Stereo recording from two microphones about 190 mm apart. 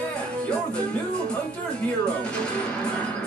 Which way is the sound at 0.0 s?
5° left (ahead or behind).